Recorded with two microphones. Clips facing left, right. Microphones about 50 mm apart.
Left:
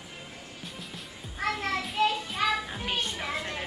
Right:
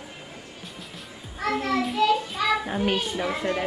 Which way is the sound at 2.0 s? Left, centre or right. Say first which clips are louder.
Right 4 dB; left.